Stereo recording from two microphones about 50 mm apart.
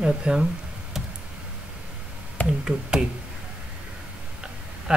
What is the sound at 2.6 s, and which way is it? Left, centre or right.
Speech, centre.